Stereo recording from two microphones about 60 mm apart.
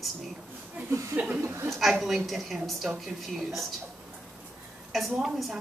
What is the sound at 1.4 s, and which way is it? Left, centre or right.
Speech, right.